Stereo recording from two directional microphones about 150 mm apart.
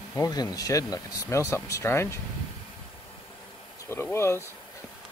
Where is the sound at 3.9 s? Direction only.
15° left (ahead or behind).